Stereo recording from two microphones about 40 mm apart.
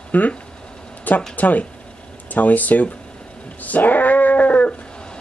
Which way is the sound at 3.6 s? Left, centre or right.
Left.